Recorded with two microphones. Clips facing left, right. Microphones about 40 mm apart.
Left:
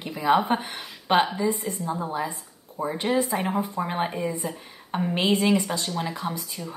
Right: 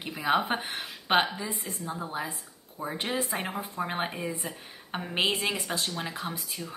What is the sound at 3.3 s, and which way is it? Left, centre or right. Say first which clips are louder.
Speech: left 7 dB; centre.